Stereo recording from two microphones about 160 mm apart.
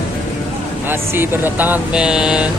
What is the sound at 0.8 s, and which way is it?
Speech, 15° right (ahead or behind).